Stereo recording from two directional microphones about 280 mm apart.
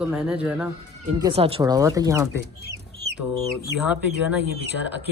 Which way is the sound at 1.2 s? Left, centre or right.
Centre.